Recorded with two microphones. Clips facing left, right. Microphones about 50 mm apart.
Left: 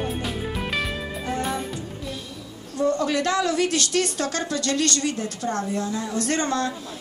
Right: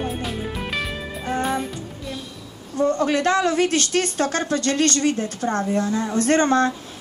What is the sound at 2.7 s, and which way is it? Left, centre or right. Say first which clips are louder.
A woman's voice: right 2 dB; right.